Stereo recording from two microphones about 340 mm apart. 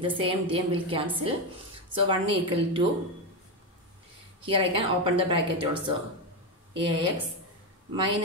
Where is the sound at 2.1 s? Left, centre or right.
Centre.